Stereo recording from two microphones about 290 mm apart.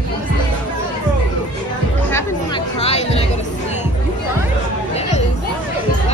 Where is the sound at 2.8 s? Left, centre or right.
Left.